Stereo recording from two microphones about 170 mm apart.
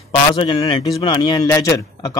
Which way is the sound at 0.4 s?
30° left (ahead or behind).